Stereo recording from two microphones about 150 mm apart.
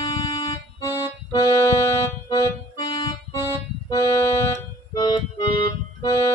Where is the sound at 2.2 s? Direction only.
25° left (ahead or behind).